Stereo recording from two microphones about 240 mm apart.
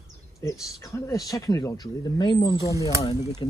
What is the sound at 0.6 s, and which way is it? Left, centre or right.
Speech, centre.